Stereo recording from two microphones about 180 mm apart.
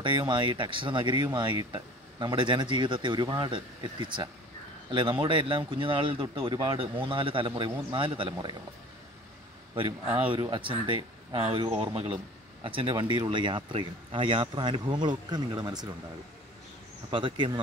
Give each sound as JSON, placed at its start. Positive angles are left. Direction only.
{"t": 0.0, "sound": "speech", "side_deg": -25}
{"t": 10.1, "sound": "speech", "side_deg": -30}
{"t": 17.1, "sound": "speech", "side_deg": -25}